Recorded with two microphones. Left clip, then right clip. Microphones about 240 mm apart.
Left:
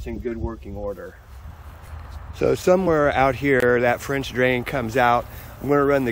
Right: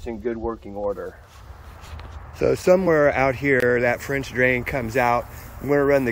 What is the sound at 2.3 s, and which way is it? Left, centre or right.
Speech, centre.